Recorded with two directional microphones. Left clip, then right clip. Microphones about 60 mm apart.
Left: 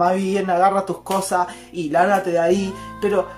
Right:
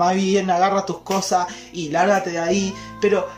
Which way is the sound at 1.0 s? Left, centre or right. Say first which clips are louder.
Even; left.